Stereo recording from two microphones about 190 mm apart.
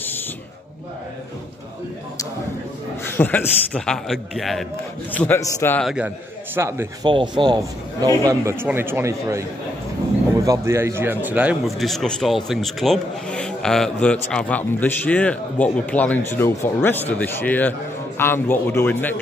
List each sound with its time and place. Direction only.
3.1 s a man's voice: 10° left (ahead or behind)
5.1 s a man's voice: 10° left (ahead or behind)
5.9 s a man's voice: 5° right (ahead or behind)
7.1 s a man's voice: 25° right (ahead or behind); by 19.1 s 10° left (ahead or behind)